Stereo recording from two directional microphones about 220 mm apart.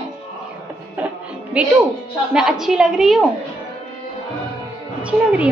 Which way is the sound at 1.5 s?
5° right (ahead or behind).